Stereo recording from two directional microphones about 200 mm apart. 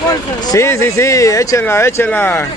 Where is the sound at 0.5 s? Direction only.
15° left (ahead or behind).